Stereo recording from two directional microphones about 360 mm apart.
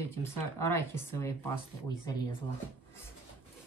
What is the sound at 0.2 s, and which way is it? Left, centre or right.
Speech, centre.